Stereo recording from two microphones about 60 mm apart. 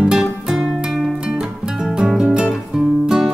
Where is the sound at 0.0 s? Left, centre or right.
Centre.